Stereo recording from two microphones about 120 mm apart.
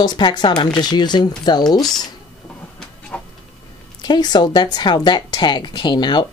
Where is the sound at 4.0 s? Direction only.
35° left (ahead or behind).